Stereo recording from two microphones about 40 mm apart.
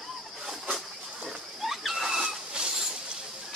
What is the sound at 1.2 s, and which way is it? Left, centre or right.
Splash, centre.